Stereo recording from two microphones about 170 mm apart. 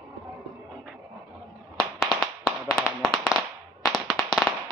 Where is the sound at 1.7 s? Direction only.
Centre (ahead or behind).